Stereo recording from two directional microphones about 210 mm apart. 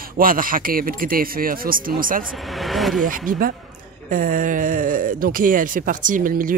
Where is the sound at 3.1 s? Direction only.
40° right (ahead or behind).